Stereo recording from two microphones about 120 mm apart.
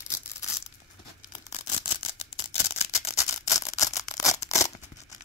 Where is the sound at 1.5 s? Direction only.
65° left (ahead or behind).